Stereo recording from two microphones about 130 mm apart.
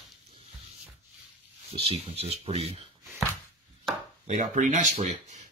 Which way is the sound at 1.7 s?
50° right (ahead or behind).